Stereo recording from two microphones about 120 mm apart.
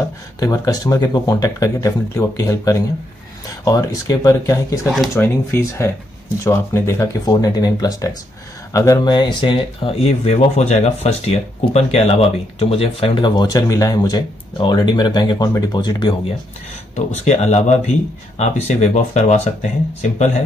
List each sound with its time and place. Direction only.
0.4 s speech: 30° left (ahead or behind)
4.8 s speech: centre (ahead or behind)
5.1 s speech: 20° left (ahead or behind)
9.1 s speech: 40° left (ahead or behind); by 13.1 s 55° left (ahead or behind)
13.2 s speech: 35° left (ahead or behind)
16.9 s speech: 70° left (ahead or behind)